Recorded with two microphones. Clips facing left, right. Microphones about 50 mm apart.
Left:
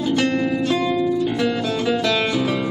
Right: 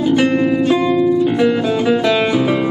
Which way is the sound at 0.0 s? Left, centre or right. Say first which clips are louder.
Right 6 dB; centre.